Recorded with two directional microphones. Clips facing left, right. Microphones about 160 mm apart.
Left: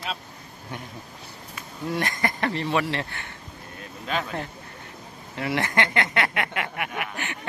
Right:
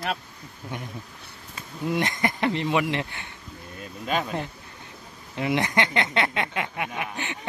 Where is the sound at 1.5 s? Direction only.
20° right (ahead or behind).